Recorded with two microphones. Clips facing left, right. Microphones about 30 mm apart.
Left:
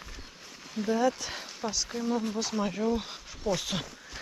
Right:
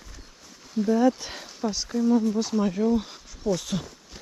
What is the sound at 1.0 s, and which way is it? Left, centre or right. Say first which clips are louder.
Speech: right 5 dB; centre.